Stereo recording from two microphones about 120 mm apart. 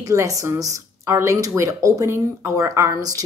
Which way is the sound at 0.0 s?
25° right (ahead or behind).